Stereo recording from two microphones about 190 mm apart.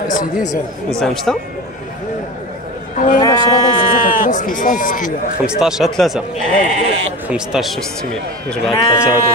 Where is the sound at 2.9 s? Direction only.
45° left (ahead or behind).